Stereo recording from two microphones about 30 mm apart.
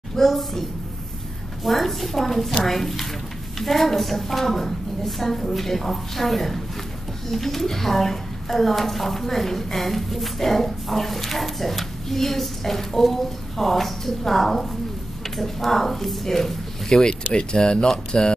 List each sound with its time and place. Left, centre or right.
0.1 s a sound: centre
2.6 s a woman's voice: centre
16.9 s speech: left